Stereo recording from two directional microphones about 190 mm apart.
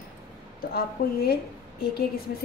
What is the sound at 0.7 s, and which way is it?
Speech, 55° left (ahead or behind).